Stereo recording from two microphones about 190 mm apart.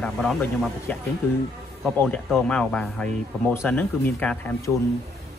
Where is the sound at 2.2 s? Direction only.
Centre (ahead or behind).